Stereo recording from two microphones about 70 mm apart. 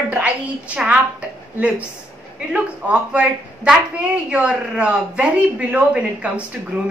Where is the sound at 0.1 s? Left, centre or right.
Right.